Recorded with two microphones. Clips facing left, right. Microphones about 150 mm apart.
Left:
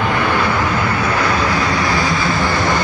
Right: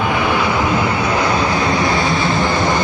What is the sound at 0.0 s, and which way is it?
Vehicle, 15° right (ahead or behind).